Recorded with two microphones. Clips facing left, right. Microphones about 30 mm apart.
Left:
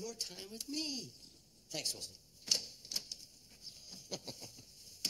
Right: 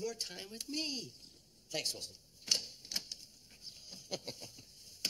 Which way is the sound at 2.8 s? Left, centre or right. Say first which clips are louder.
Right 2 dB; right.